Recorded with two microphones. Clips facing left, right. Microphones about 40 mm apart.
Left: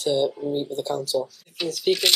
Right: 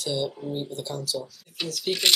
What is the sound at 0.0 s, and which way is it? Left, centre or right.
Speech, left.